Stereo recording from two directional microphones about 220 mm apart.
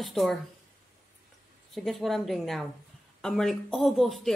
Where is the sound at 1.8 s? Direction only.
Centre (ahead or behind).